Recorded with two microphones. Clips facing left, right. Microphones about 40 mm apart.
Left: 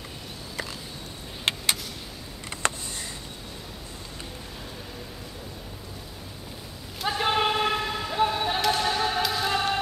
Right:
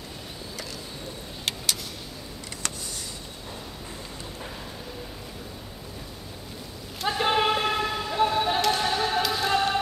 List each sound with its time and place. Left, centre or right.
1.5 s vehicle: left
2.6 s a sound: left
7.0 s basketball bounce: centre